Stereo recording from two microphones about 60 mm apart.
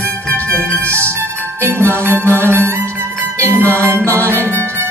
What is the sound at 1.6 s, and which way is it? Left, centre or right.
Music, right.